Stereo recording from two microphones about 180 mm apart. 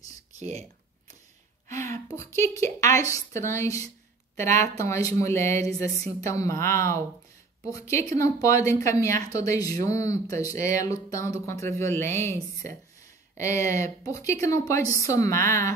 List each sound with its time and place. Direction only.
0.4 s speech: 35° right (ahead or behind)
2.0 s speech: 15° left (ahead or behind)